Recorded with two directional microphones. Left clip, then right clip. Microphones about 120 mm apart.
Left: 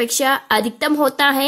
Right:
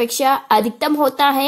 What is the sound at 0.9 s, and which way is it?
Speech, centre (ahead or behind).